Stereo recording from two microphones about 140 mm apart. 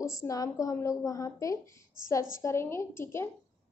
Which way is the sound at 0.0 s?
25° left (ahead or behind).